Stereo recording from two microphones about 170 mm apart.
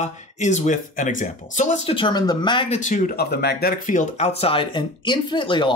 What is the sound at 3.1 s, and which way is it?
Speech, 70° left (ahead or behind).